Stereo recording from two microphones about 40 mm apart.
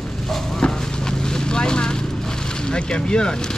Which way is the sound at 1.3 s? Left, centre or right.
Centre.